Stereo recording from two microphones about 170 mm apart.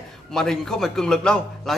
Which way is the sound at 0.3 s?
Centre (ahead or behind).